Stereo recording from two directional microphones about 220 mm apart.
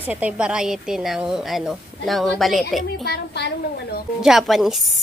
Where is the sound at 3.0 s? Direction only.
50° left (ahead or behind).